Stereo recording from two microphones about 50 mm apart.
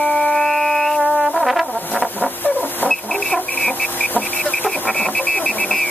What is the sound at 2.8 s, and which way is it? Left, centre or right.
Chicken, left.